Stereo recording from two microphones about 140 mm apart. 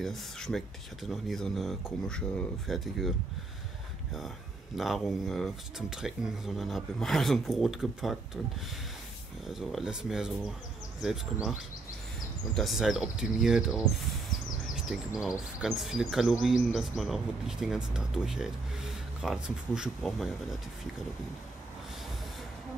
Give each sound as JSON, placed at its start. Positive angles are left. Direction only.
{"t": 0.0, "sound": "speech", "side_deg": 5}
{"t": 4.7, "sound": "speech", "side_deg": 0}
{"t": 12.5, "sound": "speech", "side_deg": 0}
{"t": 15.1, "sound": "speech", "side_deg": -5}